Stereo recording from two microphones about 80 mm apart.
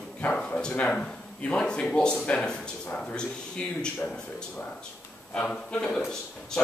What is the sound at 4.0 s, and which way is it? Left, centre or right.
A man's voice, left.